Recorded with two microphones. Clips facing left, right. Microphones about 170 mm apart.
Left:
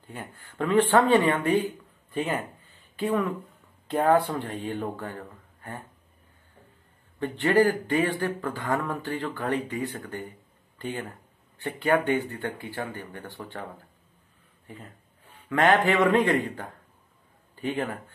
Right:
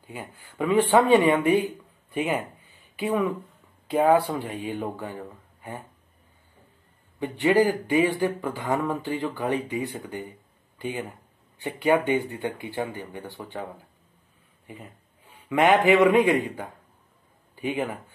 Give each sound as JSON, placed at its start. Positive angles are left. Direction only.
{"t": 0.0, "sound": "speech", "side_deg": -5}
{"t": 7.2, "sound": "speech", "side_deg": -15}
{"t": 14.7, "sound": "a man's voice", "side_deg": -15}